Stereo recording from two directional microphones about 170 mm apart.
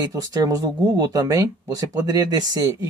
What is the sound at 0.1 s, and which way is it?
Speech, 20° right (ahead or behind).